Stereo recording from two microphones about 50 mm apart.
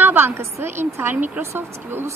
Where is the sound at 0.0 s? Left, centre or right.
Right.